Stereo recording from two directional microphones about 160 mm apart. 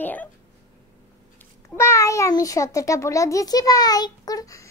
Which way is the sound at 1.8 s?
20° left (ahead or behind).